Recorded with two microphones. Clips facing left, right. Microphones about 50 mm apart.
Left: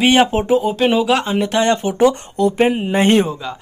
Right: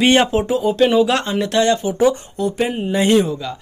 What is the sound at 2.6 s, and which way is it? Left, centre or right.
Speech, left.